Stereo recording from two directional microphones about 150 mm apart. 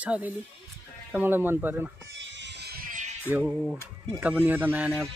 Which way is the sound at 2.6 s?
85° right.